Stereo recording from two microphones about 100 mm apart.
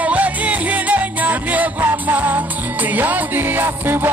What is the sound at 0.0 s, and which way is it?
Music, 15° right (ahead or behind).